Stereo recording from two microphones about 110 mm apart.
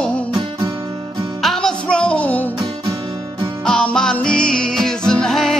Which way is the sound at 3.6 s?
5° left (ahead or behind).